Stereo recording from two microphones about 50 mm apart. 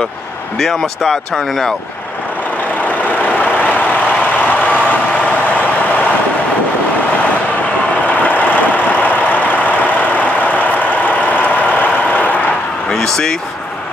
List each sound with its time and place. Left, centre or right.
0.6 s speech: centre
3.3 s vehicle: left
8.1 s vehicle: left
12.9 s a sound: centre